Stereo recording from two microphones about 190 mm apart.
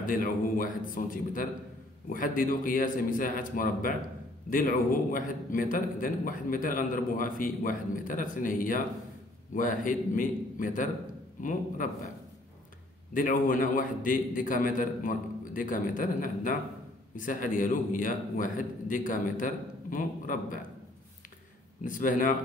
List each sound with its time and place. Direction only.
0.0 s a man's voice: 45° left (ahead or behind)
13.1 s a man's voice: 45° left (ahead or behind)
21.8 s a man's voice: 45° left (ahead or behind)